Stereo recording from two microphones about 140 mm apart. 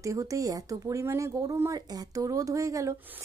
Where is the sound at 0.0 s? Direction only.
25° right (ahead or behind).